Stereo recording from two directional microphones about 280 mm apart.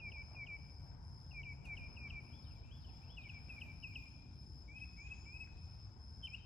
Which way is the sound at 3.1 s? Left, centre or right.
Centre.